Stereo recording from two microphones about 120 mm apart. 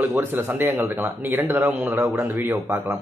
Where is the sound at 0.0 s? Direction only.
15° right (ahead or behind).